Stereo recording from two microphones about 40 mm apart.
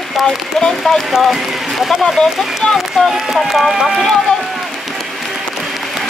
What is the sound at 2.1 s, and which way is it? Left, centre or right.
Speech, centre.